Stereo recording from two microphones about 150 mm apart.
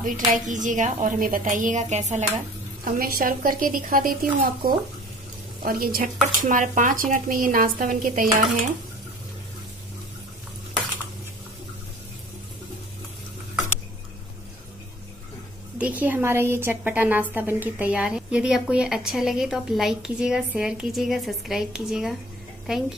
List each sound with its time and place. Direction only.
0.0 s a woman's voice: 60° right (ahead or behind)
2.8 s a woman's voice: 75° right (ahead or behind)
6.4 s a woman's voice: 60° right (ahead or behind)
15.8 s a woman's voice: 10° right (ahead or behind)